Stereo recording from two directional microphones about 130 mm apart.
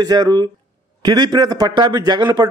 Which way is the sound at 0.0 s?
30° right (ahead or behind).